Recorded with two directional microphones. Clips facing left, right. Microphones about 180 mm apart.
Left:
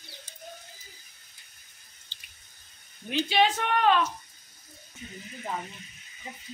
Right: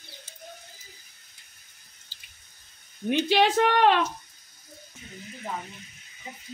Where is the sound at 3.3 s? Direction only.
70° right (ahead or behind).